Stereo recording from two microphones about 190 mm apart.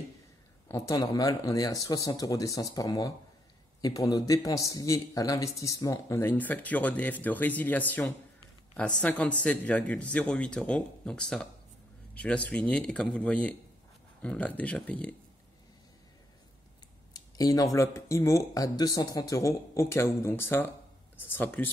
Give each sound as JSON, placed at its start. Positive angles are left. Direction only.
{"t": 0.7, "sound": "speech", "side_deg": 15}
{"t": 17.1, "sound": "a sound", "side_deg": 20}
{"t": 17.7, "sound": "speech", "side_deg": 15}